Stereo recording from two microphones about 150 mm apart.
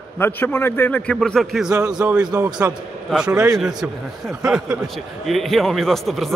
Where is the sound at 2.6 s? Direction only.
20° right (ahead or behind).